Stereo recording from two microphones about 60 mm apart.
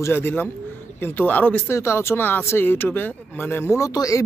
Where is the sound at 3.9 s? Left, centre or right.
Left.